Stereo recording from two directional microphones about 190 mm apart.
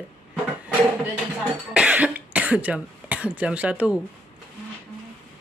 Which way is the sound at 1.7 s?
5° right (ahead or behind).